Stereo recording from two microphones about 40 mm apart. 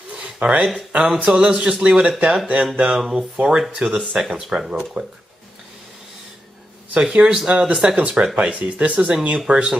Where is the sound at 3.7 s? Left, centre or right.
Centre.